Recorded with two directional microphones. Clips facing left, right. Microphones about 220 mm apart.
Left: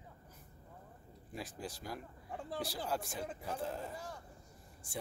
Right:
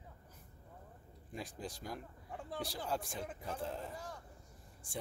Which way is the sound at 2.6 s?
5° left (ahead or behind).